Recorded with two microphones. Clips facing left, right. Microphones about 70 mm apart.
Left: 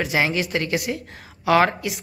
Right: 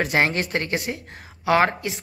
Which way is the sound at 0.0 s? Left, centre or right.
Right.